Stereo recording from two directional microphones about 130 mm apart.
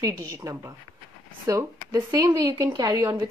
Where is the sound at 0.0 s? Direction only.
25° right (ahead or behind).